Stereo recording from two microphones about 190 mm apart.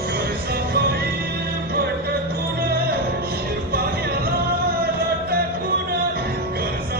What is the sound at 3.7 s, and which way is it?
Music, 50° right (ahead or behind).